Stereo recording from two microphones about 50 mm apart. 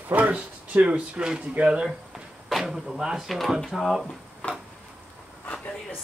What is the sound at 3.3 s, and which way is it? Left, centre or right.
Speech, centre.